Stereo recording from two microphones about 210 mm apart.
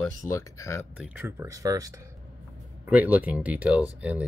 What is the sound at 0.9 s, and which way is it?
Speech, 5° right (ahead or behind).